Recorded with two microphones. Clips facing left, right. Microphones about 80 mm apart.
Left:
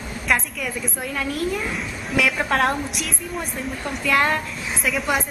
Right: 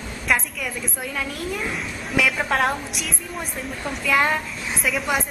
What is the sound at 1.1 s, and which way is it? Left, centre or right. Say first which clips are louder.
A woman's voice: left 5 dB; centre.